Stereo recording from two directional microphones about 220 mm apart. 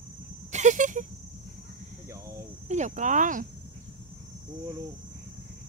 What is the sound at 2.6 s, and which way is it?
Speech, 35° right (ahead or behind).